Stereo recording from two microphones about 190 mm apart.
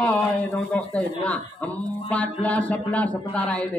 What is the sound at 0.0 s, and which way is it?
A man's voice, 5° left (ahead or behind).